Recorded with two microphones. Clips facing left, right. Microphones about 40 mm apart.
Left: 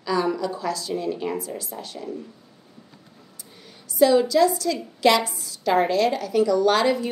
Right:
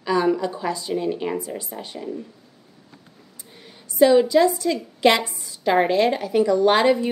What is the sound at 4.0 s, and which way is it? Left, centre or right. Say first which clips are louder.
A woman's voice: right 2 dB; right.